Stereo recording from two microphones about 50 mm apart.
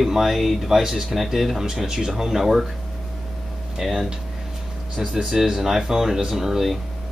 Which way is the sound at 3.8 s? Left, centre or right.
Centre.